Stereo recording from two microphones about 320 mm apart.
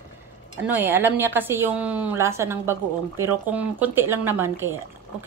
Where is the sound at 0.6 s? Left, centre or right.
Centre.